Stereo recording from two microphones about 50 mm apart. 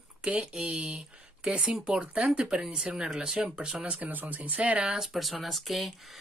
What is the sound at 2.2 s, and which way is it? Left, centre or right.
Speech, centre.